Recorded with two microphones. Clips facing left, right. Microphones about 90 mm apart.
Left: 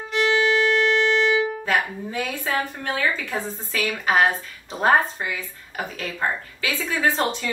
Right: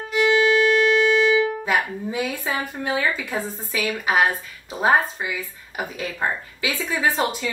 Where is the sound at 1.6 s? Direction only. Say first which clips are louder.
Right 1 dB; 15° right (ahead or behind).